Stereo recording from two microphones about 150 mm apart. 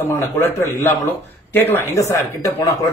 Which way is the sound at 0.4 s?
15° left (ahead or behind).